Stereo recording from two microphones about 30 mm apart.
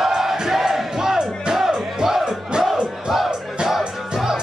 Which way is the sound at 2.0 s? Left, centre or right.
Centre.